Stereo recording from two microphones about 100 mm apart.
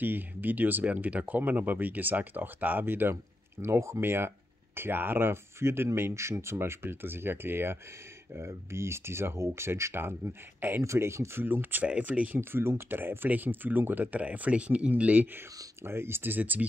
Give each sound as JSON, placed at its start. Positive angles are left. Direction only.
{"t": 0.0, "sound": "speech", "side_deg": -20}